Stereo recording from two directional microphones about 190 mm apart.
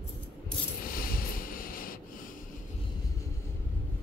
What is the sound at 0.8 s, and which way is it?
Vehicle, 50° left (ahead or behind).